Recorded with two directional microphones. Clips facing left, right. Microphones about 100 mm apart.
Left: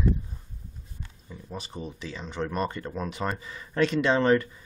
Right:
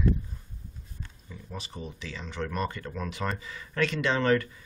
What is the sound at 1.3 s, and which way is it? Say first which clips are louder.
Speech: left 3 dB; 25° left (ahead or behind).